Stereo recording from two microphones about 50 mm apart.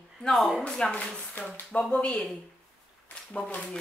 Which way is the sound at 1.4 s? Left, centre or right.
Left.